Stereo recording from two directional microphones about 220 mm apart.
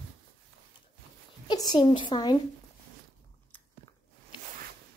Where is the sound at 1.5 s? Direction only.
20° left (ahead or behind).